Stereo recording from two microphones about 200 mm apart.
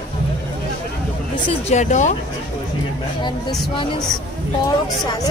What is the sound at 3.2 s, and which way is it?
Speech, 20° left (ahead or behind).